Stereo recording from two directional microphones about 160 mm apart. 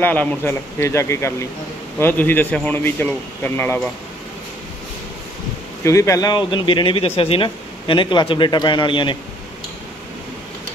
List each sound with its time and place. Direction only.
0.0 s a man's voice: 10° left (ahead or behind)
5.9 s speech: 20° left (ahead or behind)